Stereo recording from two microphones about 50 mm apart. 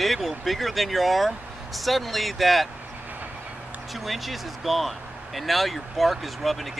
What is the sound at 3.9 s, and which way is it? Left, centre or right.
Speech, centre.